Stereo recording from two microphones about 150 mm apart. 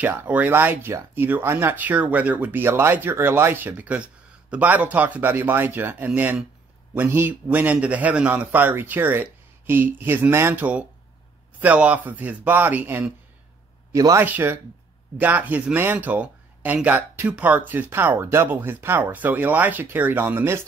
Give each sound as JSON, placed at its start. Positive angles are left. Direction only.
{"t": 0.0, "sound": "speech", "side_deg": -15}
{"t": 13.9, "sound": "speech", "side_deg": -25}
{"t": 14.2, "sound": "speech", "side_deg": -15}